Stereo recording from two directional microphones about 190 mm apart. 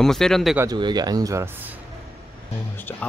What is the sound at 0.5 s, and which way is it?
Speech, 20° right (ahead or behind).